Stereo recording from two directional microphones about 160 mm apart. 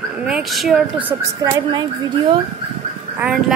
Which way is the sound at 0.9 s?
10° right (ahead or behind).